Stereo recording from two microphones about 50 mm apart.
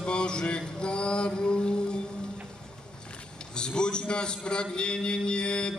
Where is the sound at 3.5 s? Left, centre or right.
Centre.